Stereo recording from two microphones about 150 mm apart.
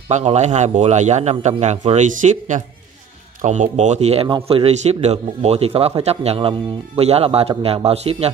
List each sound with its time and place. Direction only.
0.1 s a man's voice: 45° right (ahead or behind)